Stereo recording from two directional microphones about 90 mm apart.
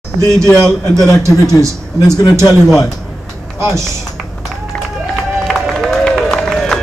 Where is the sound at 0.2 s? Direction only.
35° right (ahead or behind).